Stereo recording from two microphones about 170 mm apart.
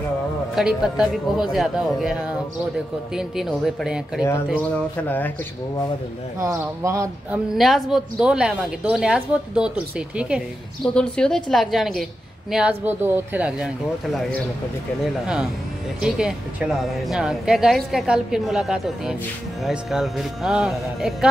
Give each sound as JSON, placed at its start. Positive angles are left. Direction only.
{"t": 0.6, "sound": "speech", "side_deg": 0}
{"t": 4.6, "sound": "a sound", "side_deg": 10}
{"t": 6.4, "sound": "speech", "side_deg": -15}
{"t": 7.5, "sound": "speech", "side_deg": 0}
{"t": 16.0, "sound": "speech", "side_deg": -5}